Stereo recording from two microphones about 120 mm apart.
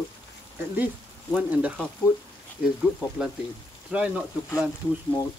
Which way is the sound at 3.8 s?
10° right (ahead or behind).